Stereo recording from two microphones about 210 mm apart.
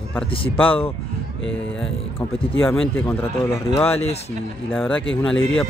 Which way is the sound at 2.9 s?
10° left (ahead or behind).